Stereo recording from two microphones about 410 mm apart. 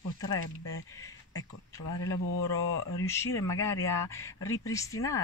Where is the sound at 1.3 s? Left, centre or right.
Left.